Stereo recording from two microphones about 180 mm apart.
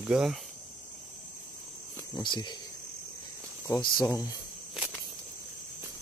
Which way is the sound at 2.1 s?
25° left (ahead or behind).